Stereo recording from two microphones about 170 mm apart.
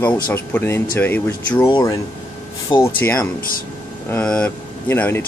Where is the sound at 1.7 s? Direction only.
25° left (ahead or behind).